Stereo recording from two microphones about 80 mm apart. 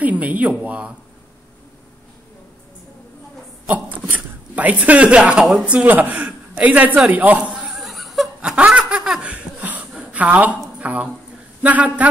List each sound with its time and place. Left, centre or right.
0.0 s speech: centre
3.6 s a sound: right; by 8.3 s centre
8.4 s laughter: centre
10.8 s a woman's voice: centre